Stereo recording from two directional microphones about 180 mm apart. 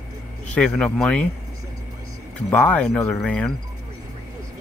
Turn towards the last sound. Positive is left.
turn(degrees=5)  # may be behind; listen again after turning